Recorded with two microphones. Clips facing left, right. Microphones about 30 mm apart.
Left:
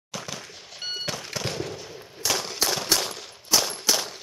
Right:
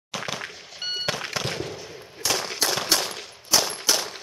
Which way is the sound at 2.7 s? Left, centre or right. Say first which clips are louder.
Right 1 dB; centre.